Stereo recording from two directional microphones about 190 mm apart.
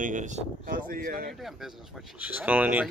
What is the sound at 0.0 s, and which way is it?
Speech, 40° right (ahead or behind).